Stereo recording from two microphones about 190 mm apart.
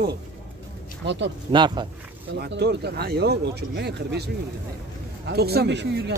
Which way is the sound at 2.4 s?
60° right (ahead or behind).